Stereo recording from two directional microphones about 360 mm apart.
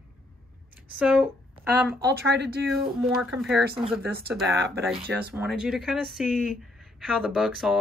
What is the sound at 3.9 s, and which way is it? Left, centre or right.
Speech, right.